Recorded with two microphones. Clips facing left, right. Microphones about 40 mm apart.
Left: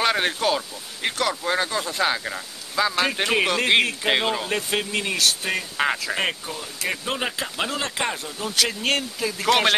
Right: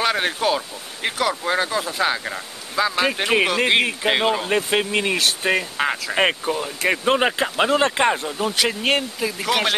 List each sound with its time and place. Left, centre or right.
0.0 s speech: centre; by 5.7 s right
5.8 s speech: centre
6.1 s speech: right
9.5 s speech: centre